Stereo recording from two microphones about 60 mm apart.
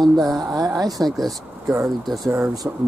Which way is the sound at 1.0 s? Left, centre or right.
Right.